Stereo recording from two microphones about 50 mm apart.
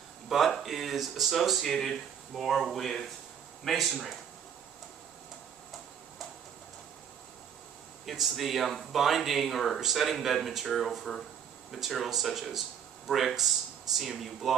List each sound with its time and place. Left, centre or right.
0.5 s speech: centre
8.0 s speech: centre